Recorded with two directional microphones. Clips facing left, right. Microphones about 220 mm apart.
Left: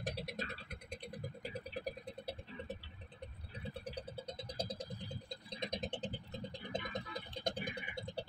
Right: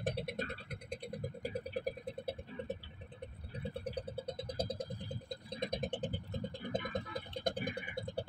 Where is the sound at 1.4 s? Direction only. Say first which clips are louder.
Right 5 dB; 55° right (ahead or behind).